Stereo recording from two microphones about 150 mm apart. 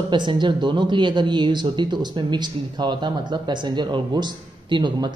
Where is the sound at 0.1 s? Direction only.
30° right (ahead or behind).